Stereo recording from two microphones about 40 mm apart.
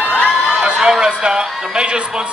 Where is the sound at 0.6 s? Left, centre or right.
Centre.